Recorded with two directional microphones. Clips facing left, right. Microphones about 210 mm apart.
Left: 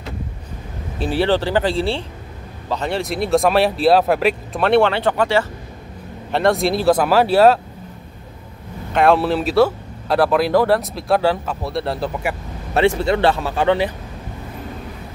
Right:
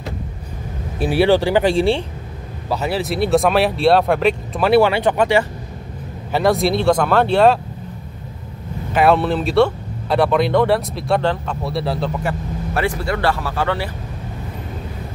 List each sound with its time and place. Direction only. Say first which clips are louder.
0.9 s speech: right 3 dB; 10° right (ahead or behind)
4.6 s speech: right 1 dB; 5° right (ahead or behind)
6.3 s speech: right 1 dB; centre (ahead or behind)
8.9 s speech: even; centre (ahead or behind)
12.7 s speech: left 6 dB; 25° left (ahead or behind)